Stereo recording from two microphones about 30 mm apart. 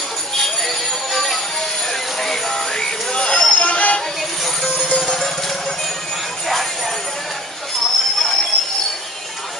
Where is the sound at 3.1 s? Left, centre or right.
Left.